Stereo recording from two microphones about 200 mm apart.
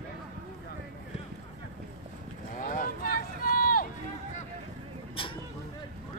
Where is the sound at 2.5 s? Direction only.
40° left (ahead or behind).